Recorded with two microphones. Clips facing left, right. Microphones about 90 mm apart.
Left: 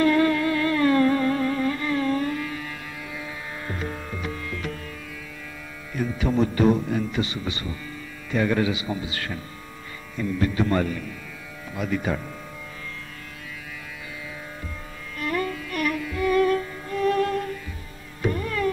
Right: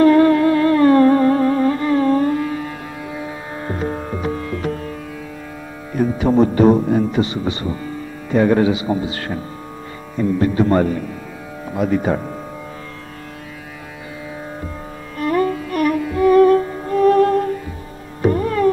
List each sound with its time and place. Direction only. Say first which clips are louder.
0.0 s music: right 9 dB; 35° right (ahead or behind)
5.9 s a man's voice: right 8 dB; 40° right (ahead or behind)
15.1 s music: right 9 dB; 35° right (ahead or behind)